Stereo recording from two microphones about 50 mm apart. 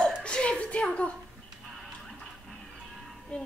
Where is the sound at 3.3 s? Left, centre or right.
Left.